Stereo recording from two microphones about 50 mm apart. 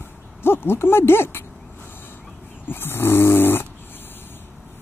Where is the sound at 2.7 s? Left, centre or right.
Left.